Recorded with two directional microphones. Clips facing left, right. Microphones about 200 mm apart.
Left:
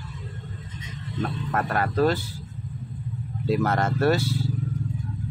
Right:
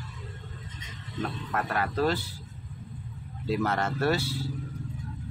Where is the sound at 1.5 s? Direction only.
45° left (ahead or behind).